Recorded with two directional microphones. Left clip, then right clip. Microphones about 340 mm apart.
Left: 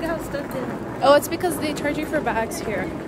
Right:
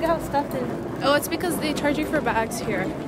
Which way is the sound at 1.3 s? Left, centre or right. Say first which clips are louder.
Left 1 dB; centre.